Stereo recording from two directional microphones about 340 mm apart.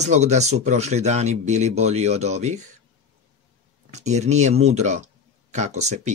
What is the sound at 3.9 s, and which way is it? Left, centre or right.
Speech, centre.